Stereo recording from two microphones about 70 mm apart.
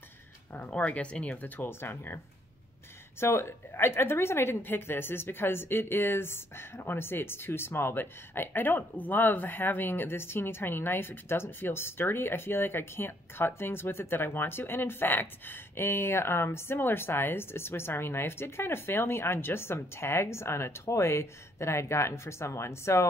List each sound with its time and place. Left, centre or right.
0.7 s speech: centre
3.2 s a woman's voice: left